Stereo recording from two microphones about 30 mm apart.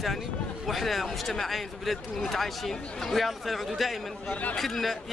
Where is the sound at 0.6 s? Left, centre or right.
Centre.